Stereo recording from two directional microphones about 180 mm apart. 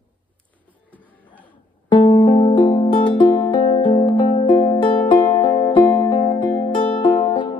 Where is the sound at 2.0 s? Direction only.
30° left (ahead or behind).